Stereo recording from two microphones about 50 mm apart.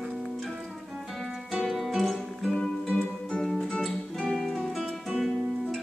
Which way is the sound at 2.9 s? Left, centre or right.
Left.